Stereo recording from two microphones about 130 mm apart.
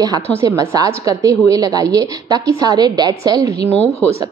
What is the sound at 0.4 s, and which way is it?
A woman's voice, 25° right (ahead or behind).